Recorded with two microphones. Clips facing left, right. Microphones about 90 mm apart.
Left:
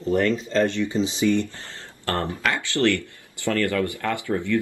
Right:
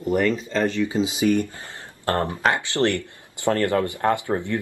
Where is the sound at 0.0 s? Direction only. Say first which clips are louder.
Even; 10° right (ahead or behind).